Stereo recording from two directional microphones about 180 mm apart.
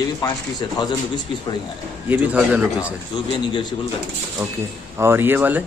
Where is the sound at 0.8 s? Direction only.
25° left (ahead or behind).